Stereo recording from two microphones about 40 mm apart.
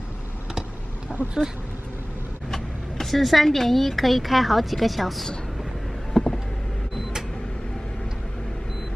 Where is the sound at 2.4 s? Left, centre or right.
Centre.